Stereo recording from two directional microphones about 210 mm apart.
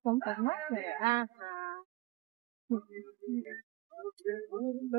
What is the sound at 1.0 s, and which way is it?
Speech, 25° right (ahead or behind).